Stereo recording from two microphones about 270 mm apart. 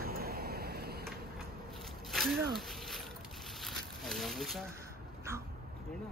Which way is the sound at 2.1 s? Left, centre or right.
Centre.